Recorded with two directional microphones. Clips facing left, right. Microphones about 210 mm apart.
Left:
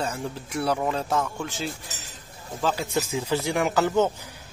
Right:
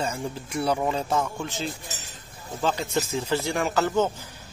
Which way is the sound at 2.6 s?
5° left (ahead or behind).